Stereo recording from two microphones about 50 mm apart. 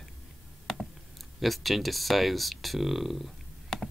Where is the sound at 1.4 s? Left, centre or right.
Centre.